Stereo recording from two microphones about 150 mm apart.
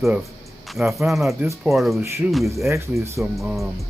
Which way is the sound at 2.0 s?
20° right (ahead or behind).